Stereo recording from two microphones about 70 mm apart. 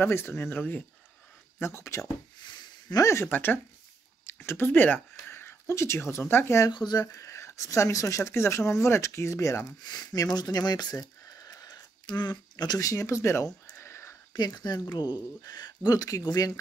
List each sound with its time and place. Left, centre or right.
0.0 s speech: left
2.4 s a sound: left
3.0 s speech: left
3.3 s speech: left
4.3 s speech: left
6.7 s speech: left
7.2 s speech: left
9.7 s speech: left
12.7 s speech: left
13.7 s a sound: left
14.3 s speech: left